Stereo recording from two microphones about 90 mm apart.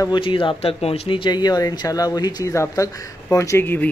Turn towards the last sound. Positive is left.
turn(degrees=20)  # may be behind; listen again after turning